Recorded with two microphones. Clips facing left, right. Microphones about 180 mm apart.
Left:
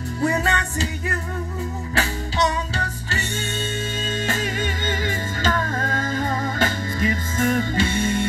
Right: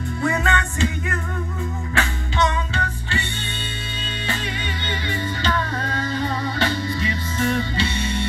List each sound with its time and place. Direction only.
0.2 s music: 35° left (ahead or behind)
4.3 s music: 45° left (ahead or behind)